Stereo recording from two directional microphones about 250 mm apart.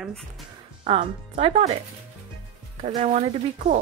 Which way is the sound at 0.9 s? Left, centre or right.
Right.